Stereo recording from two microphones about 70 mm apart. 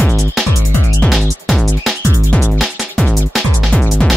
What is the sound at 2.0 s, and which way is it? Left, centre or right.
Music, right.